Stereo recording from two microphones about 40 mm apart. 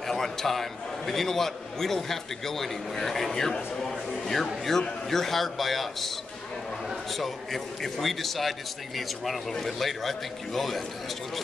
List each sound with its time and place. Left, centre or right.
0.0 s a man's voice: centre
3.5 s a sound: centre
4.3 s a man's voice: centre